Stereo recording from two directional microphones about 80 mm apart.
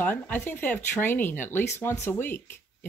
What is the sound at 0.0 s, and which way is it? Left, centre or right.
Speech, left.